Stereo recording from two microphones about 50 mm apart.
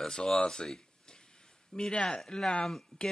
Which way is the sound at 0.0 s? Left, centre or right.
Centre.